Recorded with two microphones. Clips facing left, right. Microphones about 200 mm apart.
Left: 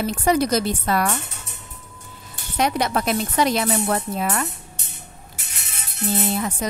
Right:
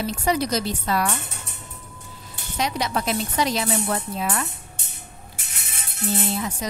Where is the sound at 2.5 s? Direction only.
55° left (ahead or behind).